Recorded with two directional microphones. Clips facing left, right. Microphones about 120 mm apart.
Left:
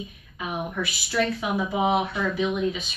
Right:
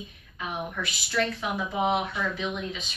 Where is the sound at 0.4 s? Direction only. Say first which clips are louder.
Left 3 dB; 10° left (ahead or behind).